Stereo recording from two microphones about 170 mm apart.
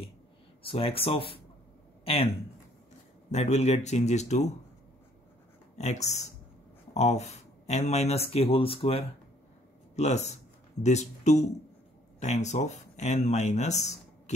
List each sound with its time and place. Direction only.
0.7 s speech: 35° left (ahead or behind)
3.3 s speech: 40° left (ahead or behind)
5.8 s speech: 40° left (ahead or behind)